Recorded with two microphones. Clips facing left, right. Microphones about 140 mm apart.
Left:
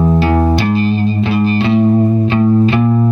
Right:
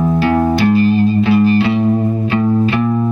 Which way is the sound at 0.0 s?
25° left (ahead or behind).